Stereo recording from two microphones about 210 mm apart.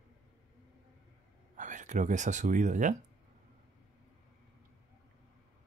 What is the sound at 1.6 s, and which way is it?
Speech, 35° right (ahead or behind).